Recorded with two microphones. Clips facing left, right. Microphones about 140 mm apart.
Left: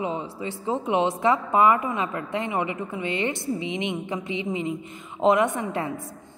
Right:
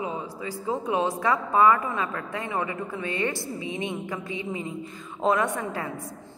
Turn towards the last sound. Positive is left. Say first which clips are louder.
# left 3 dB
turn(degrees=25)  # may be behind; listen again after turning